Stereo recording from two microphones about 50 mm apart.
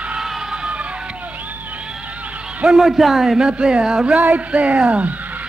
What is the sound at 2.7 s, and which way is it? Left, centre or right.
Speech, centre.